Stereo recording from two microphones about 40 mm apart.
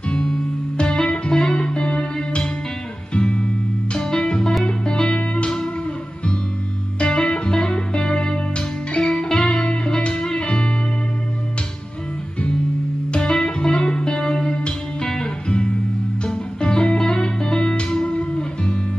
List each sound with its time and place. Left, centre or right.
0.1 s music: left
7.0 s music: left
13.1 s music: left